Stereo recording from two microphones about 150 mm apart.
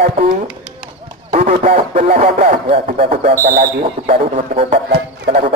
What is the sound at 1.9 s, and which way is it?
Speech, 65° right (ahead or behind).